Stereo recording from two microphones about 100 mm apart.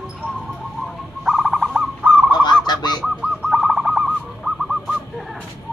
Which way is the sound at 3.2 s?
5° right (ahead or behind).